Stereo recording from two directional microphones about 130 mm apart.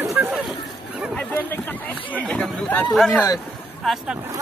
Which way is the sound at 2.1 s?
5° left (ahead or behind).